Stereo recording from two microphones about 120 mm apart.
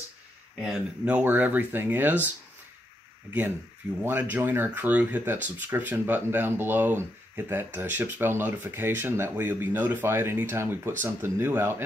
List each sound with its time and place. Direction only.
0.6 s speech: 10° right (ahead or behind)
4.0 s speech: 15° right (ahead or behind)